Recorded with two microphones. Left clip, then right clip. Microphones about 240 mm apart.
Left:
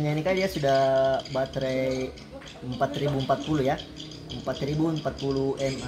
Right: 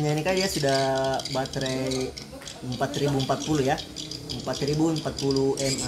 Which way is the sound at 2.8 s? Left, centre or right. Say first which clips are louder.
Right 1 dB; centre.